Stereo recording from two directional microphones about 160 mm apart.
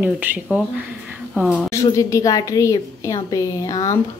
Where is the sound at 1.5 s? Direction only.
20° left (ahead or behind).